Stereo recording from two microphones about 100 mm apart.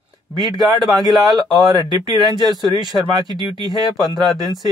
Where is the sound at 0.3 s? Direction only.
45° right (ahead or behind).